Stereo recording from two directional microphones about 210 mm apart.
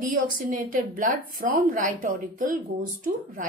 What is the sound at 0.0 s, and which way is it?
A woman's voice, 40° right (ahead or behind).